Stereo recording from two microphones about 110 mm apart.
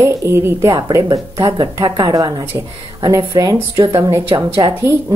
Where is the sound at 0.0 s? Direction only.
25° right (ahead or behind).